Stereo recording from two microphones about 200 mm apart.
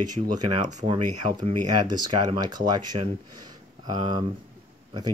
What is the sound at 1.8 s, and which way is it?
Speech, 20° right (ahead or behind).